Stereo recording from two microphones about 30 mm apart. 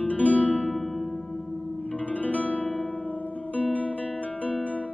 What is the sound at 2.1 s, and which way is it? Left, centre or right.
Guitar, left.